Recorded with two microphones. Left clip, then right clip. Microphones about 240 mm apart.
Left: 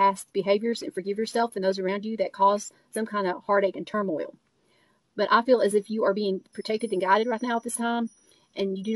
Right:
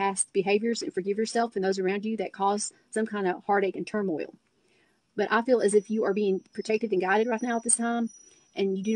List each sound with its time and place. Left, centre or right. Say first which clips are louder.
0.0 s speech: left 4 dB; right